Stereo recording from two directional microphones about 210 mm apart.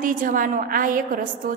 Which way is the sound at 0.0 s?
40° right (ahead or behind).